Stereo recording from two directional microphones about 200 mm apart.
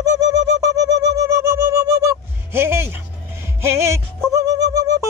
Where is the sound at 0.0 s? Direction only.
15° right (ahead or behind).